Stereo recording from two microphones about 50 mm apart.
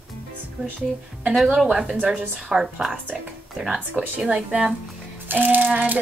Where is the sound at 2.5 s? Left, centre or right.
Centre.